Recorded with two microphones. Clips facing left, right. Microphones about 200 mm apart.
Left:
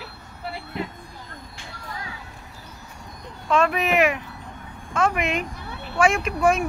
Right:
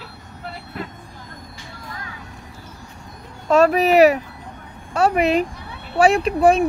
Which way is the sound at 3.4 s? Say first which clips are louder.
Right 6 dB; 40° right (ahead or behind).